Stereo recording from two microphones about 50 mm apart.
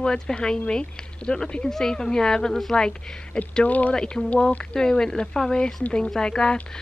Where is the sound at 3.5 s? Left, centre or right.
Left.